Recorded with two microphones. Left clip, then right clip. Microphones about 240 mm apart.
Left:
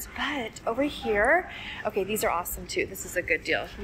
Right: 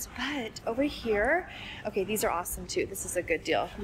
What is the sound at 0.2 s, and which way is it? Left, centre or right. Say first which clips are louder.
A woman's voice: left 4 dB; centre.